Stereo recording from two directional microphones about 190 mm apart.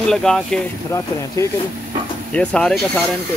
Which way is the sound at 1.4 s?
15° left (ahead or behind).